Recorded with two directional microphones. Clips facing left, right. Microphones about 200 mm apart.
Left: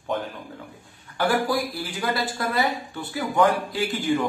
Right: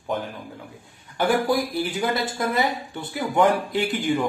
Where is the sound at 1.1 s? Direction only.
20° right (ahead or behind).